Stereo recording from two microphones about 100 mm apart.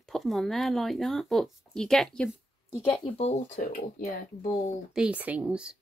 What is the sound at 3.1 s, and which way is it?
Speech, 85° left.